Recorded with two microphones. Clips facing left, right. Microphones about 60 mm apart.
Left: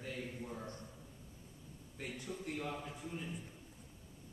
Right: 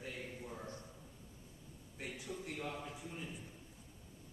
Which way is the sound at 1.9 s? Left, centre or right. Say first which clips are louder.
Left 1 dB; centre.